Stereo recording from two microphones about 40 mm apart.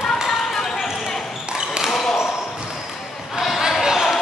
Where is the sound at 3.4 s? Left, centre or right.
Centre.